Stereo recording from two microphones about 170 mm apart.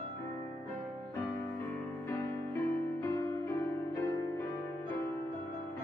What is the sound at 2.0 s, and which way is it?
Music, 15° left (ahead or behind).